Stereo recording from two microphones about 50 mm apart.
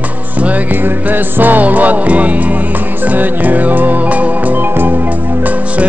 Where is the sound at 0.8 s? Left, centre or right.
Right.